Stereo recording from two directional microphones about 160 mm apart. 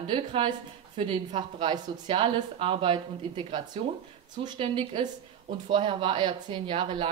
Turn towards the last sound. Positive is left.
turn(degrees=-30)  # may be behind; listen again after turning